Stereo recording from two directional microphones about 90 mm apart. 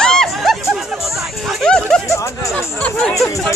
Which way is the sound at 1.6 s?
10° left (ahead or behind).